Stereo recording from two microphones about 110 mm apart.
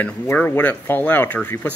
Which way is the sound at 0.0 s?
20° left (ahead or behind).